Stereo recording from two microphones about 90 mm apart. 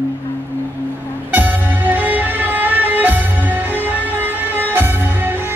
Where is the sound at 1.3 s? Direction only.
20° right (ahead or behind).